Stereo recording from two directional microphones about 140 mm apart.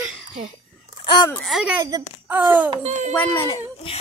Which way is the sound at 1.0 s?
35° left (ahead or behind).